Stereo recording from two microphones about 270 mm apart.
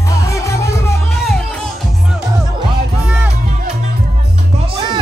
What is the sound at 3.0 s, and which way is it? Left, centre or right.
Music, centre.